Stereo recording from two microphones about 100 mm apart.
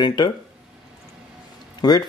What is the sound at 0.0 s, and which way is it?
Speech, 50° left (ahead or behind).